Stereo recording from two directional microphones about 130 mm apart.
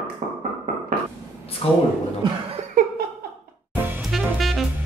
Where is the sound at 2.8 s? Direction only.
90° right.